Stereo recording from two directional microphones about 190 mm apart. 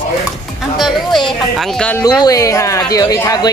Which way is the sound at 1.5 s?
5° left (ahead or behind).